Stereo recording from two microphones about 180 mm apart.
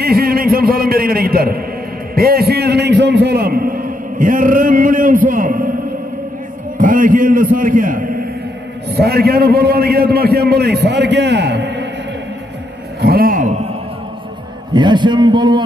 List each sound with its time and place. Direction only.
0.0 s a man's voice: 55° right (ahead or behind)
6.8 s a man's voice: 50° right (ahead or behind)
8.9 s a man's voice: 60° right (ahead or behind); by 11.9 s 75° right (ahead or behind)
13.0 s a man's voice: 55° right (ahead or behind)
14.7 s a man's voice: 25° right (ahead or behind)